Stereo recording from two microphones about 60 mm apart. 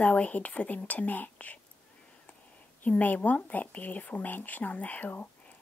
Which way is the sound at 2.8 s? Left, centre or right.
Left.